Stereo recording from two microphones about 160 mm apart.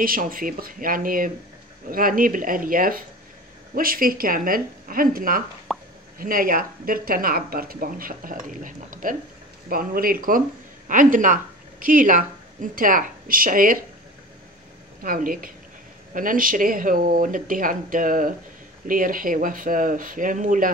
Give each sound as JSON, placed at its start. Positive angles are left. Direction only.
{"t": 0.0, "sound": "speech", "side_deg": -60}
{"t": 5.7, "sound": "plop", "side_deg": 0}
{"t": 6.1, "sound": "speech", "side_deg": -60}
{"t": 9.7, "sound": "speech", "side_deg": -65}
{"t": 10.9, "sound": "speech", "side_deg": -55}
{"t": 15.0, "sound": "speech", "side_deg": -60}